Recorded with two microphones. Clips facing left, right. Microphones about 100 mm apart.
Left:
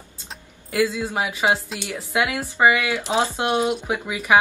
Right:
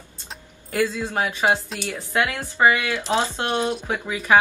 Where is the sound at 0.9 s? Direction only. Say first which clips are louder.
Even; 10° left (ahead or behind).